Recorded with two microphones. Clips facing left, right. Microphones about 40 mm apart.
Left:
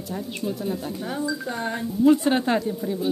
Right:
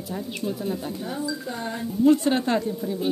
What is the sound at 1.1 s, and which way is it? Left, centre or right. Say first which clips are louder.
Speech: left 4 dB; left.